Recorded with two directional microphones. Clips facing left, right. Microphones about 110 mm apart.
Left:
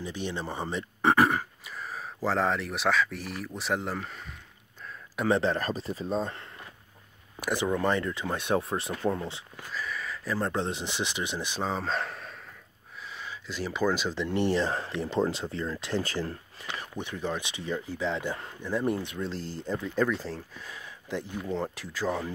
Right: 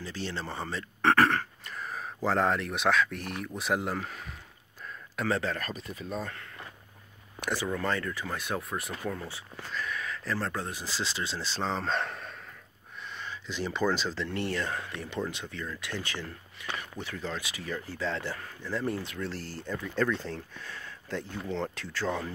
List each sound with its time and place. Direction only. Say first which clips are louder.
0.0 s speech: left 2 dB; 15° left (ahead or behind); by 4.3 s centre (ahead or behind)
5.2 s speech: left 5 dB; 20° left (ahead or behind)
7.5 s speech: left 4 dB; 20° left (ahead or behind)
9.6 s speech: right 1 dB; 5° left (ahead or behind)
10.5 s speech: left 5 dB; 25° left (ahead or behind)
16.8 s speech: left 4 dB; 20° left (ahead or behind)
20.1 s speech: left 1 dB; 5° left (ahead or behind)